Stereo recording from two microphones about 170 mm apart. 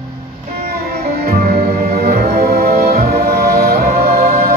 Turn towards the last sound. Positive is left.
turn(degrees=-65)  # may be behind; listen again after turning